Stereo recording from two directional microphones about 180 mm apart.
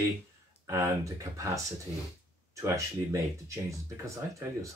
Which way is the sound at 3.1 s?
15° right (ahead or behind).